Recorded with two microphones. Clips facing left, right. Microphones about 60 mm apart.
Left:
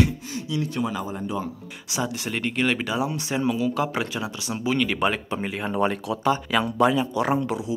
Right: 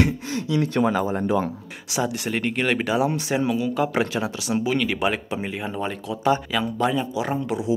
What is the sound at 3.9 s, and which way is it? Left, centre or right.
Speech, right.